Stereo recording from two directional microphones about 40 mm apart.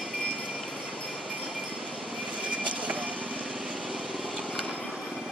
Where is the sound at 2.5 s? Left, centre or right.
Right.